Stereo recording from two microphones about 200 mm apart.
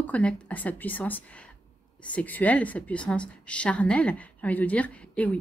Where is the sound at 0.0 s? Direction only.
5° left (ahead or behind).